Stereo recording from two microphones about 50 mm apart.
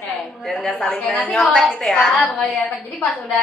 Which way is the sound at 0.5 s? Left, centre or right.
Centre.